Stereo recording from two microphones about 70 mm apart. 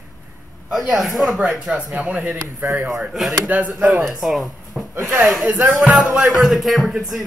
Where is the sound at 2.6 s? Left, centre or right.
Right.